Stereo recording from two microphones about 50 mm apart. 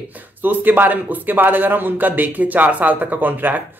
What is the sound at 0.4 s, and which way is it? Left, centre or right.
Speech, right.